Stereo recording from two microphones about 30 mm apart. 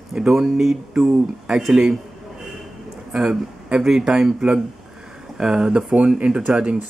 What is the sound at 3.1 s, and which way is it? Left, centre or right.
Speech, centre.